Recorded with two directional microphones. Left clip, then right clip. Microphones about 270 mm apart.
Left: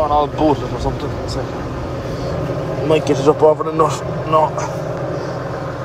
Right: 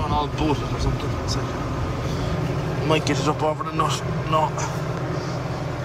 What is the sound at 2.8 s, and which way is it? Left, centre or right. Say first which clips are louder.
A man's voice: left 8 dB; centre.